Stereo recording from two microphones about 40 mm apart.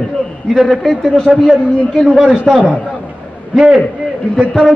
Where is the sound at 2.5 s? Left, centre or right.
Centre.